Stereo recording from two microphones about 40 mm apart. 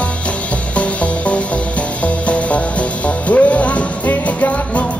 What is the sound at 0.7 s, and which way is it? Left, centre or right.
Music, left.